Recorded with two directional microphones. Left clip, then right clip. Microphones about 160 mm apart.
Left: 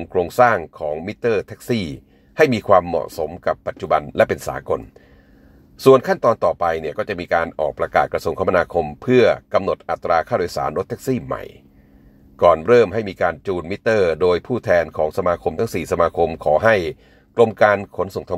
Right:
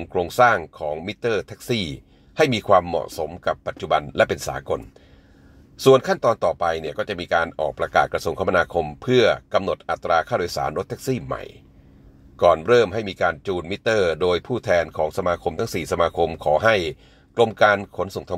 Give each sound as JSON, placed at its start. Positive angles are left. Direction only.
{"t": 0.0, "sound": "speech", "side_deg": 20}
{"t": 6.0, "sound": "speech", "side_deg": 25}
{"t": 12.6, "sound": "speech", "side_deg": 25}